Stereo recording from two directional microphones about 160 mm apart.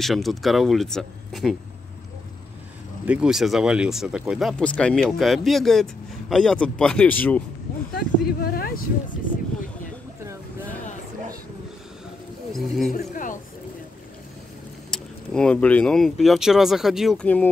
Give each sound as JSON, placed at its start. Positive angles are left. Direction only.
{"t": 0.0, "sound": "speech", "side_deg": 0}
{"t": 3.1, "sound": "speech", "side_deg": -5}
{"t": 7.9, "sound": "speech", "side_deg": 75}
{"t": 12.5, "sound": "speech", "side_deg": 0}
{"t": 12.9, "sound": "speech", "side_deg": 55}
{"t": 14.9, "sound": "speech", "side_deg": 5}